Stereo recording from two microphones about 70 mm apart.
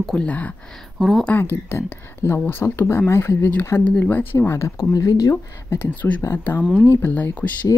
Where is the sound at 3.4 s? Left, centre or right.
Left.